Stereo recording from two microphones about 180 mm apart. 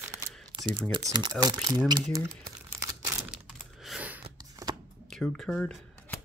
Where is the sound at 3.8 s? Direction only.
5° right (ahead or behind).